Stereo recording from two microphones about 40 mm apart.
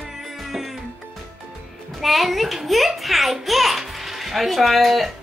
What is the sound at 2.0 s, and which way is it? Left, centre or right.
A child's voice, centre.